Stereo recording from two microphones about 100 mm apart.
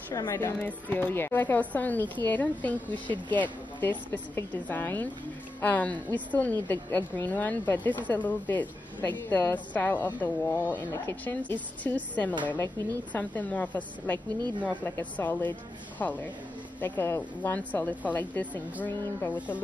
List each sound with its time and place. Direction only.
0.1 s speech: 35° left (ahead or behind)
0.6 s a woman's voice: 15° left (ahead or behind)
12.4 s a woman's voice: 25° left (ahead or behind)
13.1 s a woman's voice: 15° left (ahead or behind)
19.3 s speech: 15° right (ahead or behind)